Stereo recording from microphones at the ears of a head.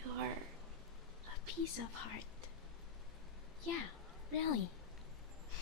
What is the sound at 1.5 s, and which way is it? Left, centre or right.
Speech, left.